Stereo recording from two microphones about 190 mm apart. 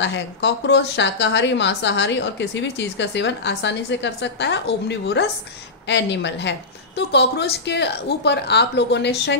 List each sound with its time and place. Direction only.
0.0 s a woman's voice: 70° left (ahead or behind)